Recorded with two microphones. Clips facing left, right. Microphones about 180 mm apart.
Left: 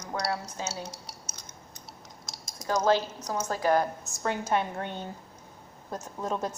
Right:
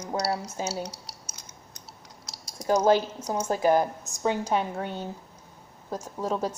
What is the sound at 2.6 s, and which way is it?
Speech, 10° right (ahead or behind).